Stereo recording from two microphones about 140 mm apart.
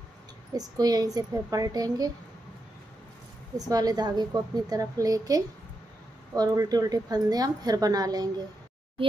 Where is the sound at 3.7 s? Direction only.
30° right (ahead or behind).